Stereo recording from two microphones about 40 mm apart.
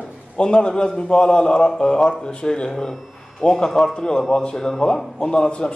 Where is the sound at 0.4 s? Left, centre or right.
Left.